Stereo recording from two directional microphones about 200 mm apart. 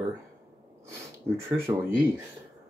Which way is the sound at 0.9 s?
10° right (ahead or behind).